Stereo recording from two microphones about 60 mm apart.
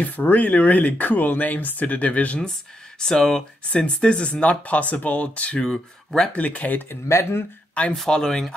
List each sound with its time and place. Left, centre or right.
0.0 s speech: left
3.0 s speech: centre
5.7 s speech: centre
6.3 s speech: left
6.9 s speech: left
7.9 s speech: centre